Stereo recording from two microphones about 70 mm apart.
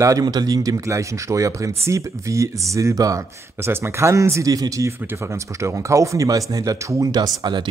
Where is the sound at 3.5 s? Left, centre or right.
Right.